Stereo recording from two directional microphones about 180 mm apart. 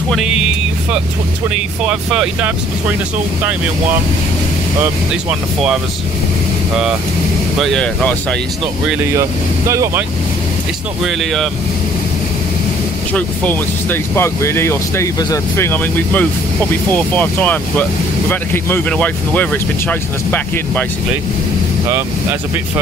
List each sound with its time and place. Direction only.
1.9 s speech: 5° right (ahead or behind)
7.5 s speech: centre (ahead or behind)
9.7 s speech: 15° right (ahead or behind)
11.1 s speech: centre (ahead or behind)
13.1 s speech: 10° left (ahead or behind)